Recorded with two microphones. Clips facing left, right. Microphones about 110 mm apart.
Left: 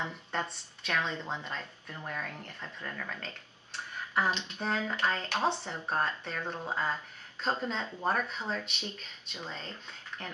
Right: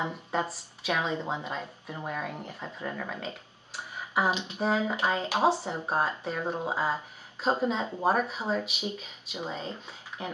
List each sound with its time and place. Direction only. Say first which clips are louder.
0.0 s speech: right 5 dB; 5° right (ahead or behind)
3.2 s speech: right 6 dB; 5° right (ahead or behind)